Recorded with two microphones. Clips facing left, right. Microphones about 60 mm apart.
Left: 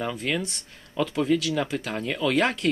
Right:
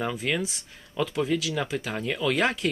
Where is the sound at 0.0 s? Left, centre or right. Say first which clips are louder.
Even; centre.